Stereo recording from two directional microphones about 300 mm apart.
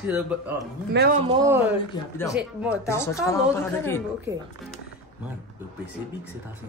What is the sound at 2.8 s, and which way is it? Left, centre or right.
A woman's voice, centre.